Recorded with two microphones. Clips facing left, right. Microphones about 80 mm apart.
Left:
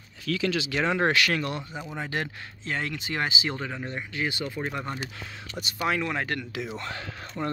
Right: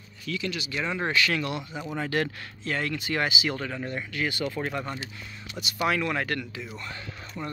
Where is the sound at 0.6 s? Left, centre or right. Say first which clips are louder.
Left 5 dB; left.